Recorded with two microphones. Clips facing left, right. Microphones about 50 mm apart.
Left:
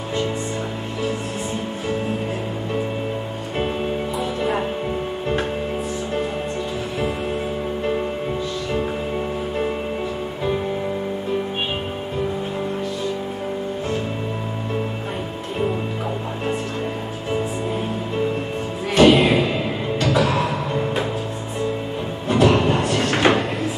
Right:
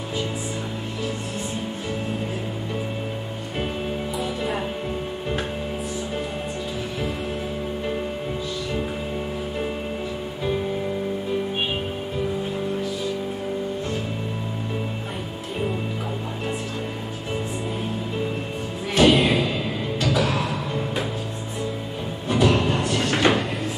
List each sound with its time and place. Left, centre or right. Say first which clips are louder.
4.2 s music: left 4 dB; centre
18.9 s music: left 4 dB; centre
19.4 s music: left 3 dB; centre
20.0 s music: left 4 dB; centre
22.3 s a sound: left 4 dB; centre